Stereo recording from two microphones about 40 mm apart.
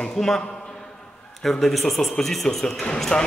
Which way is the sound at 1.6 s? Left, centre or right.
Centre.